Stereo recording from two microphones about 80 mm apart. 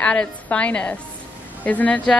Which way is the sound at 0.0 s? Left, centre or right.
Centre.